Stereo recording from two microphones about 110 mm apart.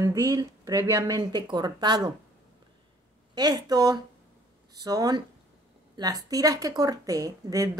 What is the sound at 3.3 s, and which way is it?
A woman's voice, 40° right (ahead or behind).